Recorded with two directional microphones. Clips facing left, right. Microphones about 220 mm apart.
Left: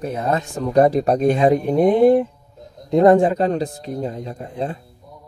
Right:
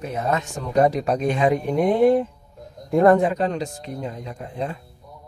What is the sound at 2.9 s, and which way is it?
A man's voice, 25° left (ahead or behind).